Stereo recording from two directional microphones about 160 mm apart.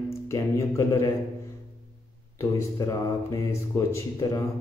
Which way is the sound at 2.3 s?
20° left (ahead or behind).